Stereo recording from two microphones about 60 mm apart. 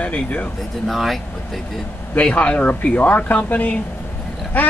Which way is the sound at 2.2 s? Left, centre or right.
Centre.